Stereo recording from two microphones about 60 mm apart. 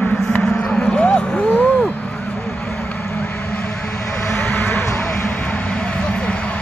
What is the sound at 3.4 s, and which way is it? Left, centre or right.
Vehicle, left.